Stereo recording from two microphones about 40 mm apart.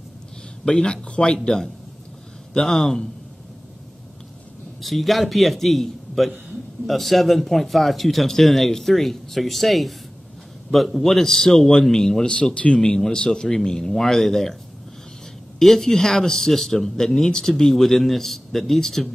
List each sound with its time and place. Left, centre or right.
0.7 s speech: centre
2.5 s speech: centre
4.8 s speech: centre
12.5 s speech: left; by 14.6 s centre
15.6 s speech: centre